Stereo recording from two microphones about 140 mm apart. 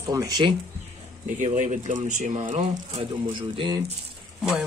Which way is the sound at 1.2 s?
65° right (ahead or behind).